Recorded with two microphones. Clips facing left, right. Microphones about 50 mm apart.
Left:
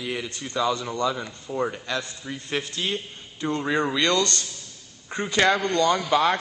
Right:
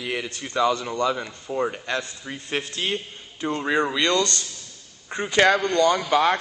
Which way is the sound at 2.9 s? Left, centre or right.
Centre.